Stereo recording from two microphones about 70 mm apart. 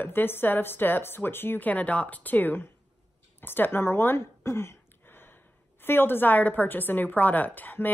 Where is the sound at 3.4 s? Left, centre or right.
Left.